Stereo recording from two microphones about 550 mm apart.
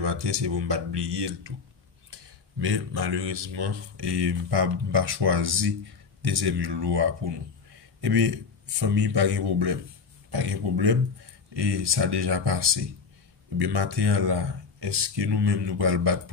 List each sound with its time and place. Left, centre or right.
0.0 s speech: right
2.6 s a man's voice: right